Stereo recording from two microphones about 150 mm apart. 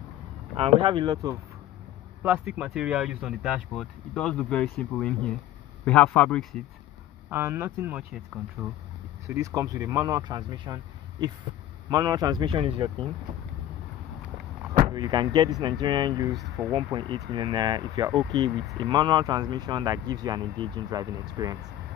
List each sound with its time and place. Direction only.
0.6 s speech: 40° right (ahead or behind)
1.0 s speech: 20° right (ahead or behind)
2.2 s speech: 10° right (ahead or behind); by 6.4 s 10° left (ahead or behind)
7.2 s speech: 15° right (ahead or behind)
9.3 s speech: 20° right (ahead or behind)
14.9 s speech: 30° right (ahead or behind)
16.3 s speech: 10° right (ahead or behind)
16.7 s speech: 30° right (ahead or behind)